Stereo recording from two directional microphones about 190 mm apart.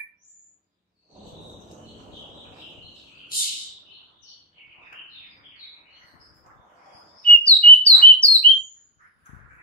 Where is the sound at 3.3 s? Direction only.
50° left (ahead or behind).